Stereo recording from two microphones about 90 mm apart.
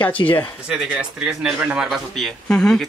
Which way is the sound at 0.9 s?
10° right (ahead or behind).